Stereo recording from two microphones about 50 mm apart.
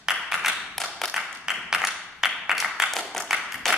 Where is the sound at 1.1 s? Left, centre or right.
Centre.